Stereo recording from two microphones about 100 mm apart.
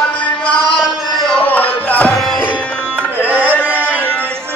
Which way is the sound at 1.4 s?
15° left (ahead or behind).